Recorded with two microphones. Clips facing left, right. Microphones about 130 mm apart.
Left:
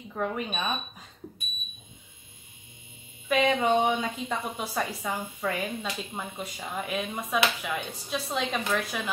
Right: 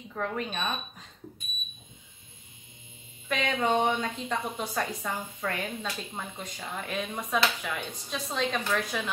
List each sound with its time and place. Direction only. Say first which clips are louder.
0.1 s speech: left 2 dB; 10° left (ahead or behind)
3.3 s a woman's voice: left 4 dB; 5° left (ahead or behind)